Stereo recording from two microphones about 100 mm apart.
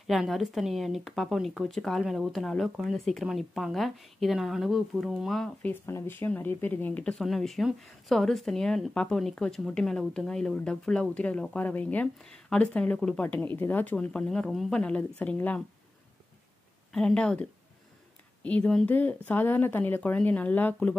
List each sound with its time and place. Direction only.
0.0 s a woman's voice: centre (ahead or behind)
5.6 s a woman's voice: 20° left (ahead or behind)
16.9 s speech: 10° left (ahead or behind)